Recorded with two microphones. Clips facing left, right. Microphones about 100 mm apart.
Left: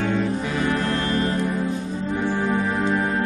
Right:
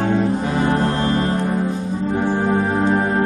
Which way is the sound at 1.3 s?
60° right (ahead or behind).